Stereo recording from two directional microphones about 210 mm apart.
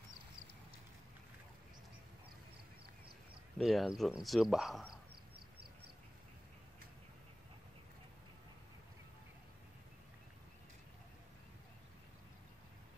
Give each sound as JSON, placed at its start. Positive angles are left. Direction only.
{"t": 3.5, "sound": "speech", "side_deg": 0}